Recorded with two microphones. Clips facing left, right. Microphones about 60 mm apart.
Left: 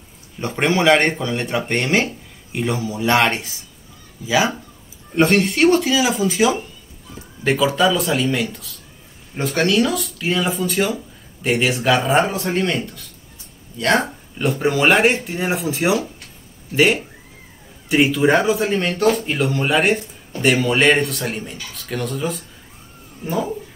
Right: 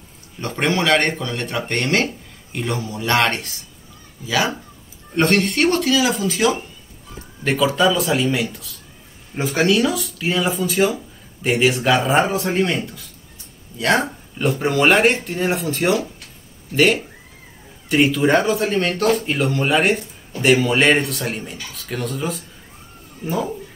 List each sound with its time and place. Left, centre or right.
0.4 s speech: centre
6.2 s speech: centre
7.4 s speech: centre